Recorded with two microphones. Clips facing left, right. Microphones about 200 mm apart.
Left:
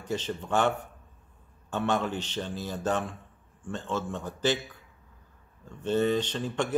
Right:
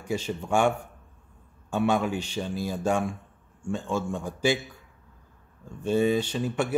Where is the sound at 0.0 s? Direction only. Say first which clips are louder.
Right 2 dB; 10° right (ahead or behind).